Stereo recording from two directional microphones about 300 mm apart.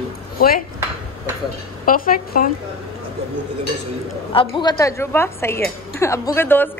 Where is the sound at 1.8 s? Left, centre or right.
Left.